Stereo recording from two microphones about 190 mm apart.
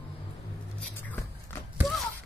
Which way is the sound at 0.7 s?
10° left (ahead or behind).